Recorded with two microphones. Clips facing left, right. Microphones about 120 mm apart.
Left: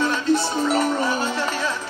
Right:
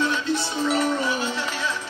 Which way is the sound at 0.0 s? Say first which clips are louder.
Left 4 dB; 40° left (ahead or behind).